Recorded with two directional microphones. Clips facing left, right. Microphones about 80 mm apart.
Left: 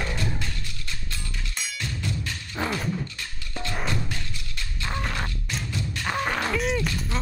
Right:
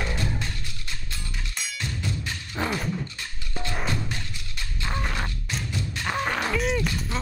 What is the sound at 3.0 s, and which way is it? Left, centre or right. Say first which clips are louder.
Music: even; right.